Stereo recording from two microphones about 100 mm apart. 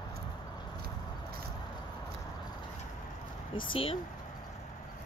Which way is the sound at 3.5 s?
60° left (ahead or behind).